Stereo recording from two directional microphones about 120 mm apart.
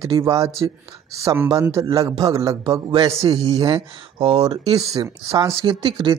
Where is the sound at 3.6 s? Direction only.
45° right (ahead or behind).